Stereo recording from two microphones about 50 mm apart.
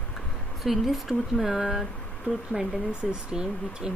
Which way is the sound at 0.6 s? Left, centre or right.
Centre.